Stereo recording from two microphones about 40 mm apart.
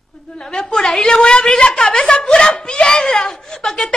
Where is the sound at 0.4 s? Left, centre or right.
Centre.